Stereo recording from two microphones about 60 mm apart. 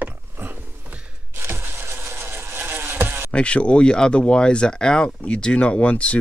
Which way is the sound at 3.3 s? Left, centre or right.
Centre.